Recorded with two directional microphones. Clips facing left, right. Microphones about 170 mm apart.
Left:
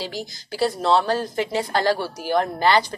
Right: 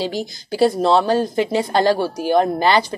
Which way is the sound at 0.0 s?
20° right (ahead or behind).